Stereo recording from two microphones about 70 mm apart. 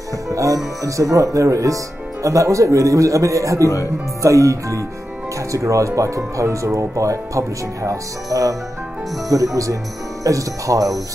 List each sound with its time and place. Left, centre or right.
0.3 s speech: right